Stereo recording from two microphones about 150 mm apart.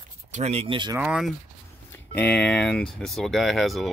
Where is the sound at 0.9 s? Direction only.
5° right (ahead or behind).